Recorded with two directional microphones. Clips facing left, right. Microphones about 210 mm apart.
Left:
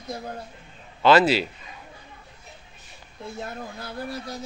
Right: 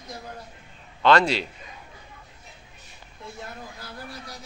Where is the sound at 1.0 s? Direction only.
5° left (ahead or behind).